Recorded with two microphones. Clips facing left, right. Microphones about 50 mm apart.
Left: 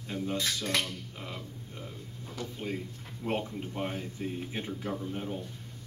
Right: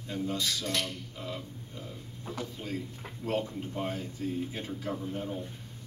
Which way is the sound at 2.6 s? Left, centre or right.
Left.